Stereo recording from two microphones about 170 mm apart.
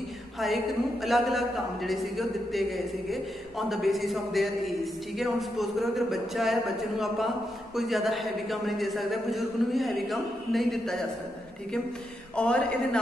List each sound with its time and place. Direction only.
1.0 s a man's voice: centre (ahead or behind)
12.4 s a man's voice: 5° left (ahead or behind)